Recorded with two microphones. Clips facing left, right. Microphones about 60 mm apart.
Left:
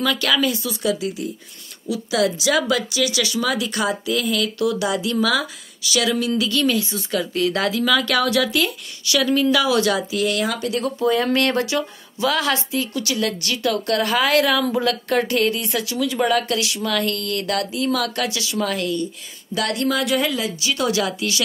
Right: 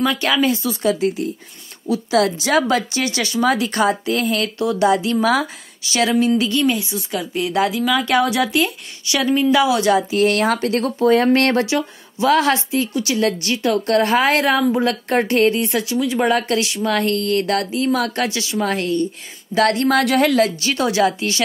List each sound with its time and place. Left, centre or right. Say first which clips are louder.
0.0 s a woman's voice: right 2 dB; right
1.9 s a woman's voice: right 3 dB; right
10.2 s a woman's voice: right 5 dB; right
19.9 s a woman's voice: right 5 dB; right
20.7 s a woman's voice: right 2 dB; right